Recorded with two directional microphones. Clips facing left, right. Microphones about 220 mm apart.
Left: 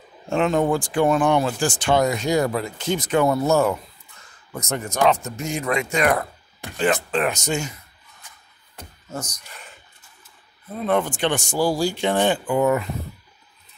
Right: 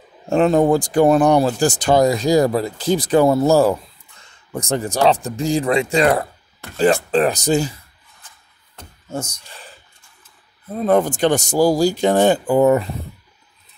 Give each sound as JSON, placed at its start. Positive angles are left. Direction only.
{"t": 0.3, "sound": "speech", "side_deg": -35}
{"t": 9.1, "sound": "speech", "side_deg": -30}
{"t": 10.8, "sound": "speech", "side_deg": -40}